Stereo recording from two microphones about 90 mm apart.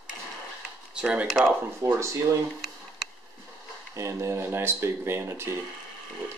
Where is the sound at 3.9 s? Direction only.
35° right (ahead or behind).